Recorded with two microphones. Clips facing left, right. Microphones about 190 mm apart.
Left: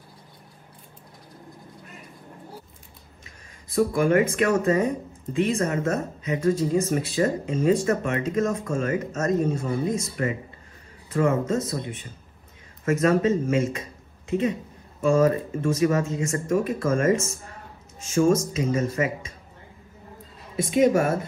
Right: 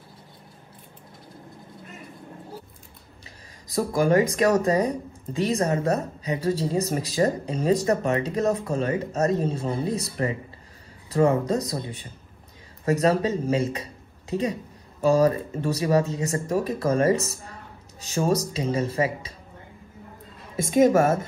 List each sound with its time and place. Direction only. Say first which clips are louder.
3.7 s speech: left 1 dB; 35° right (ahead or behind)
20.6 s a woman's voice: right 2 dB; 45° right (ahead or behind)